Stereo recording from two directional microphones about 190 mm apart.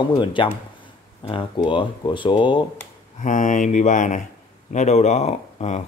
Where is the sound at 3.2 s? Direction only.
40° left (ahead or behind).